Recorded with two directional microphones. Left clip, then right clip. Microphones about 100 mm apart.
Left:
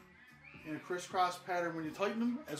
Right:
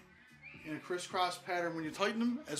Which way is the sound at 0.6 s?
15° right (ahead or behind).